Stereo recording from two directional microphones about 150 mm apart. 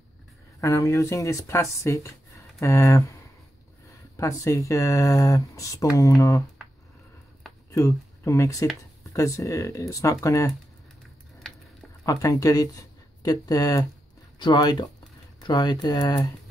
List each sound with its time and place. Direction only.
0.6 s speech: 20° left (ahead or behind)
4.2 s speech: 20° left (ahead or behind)
7.7 s speech: 20° left (ahead or behind)
12.1 s speech: 20° left (ahead or behind)